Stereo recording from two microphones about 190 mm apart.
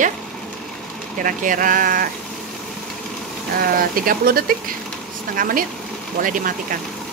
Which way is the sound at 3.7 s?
50° right (ahead or behind).